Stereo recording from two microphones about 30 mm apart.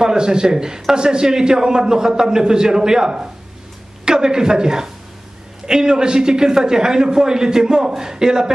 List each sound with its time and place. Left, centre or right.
0.0 s a man's voice: right